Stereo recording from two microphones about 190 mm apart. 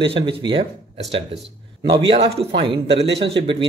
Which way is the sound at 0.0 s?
25° right (ahead or behind).